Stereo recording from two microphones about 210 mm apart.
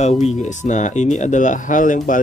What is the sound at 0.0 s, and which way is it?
Speech, 35° left (ahead or behind).